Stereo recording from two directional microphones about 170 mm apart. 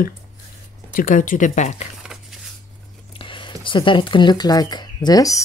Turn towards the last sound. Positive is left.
turn(degrees=20)  # may be behind; listen again after turning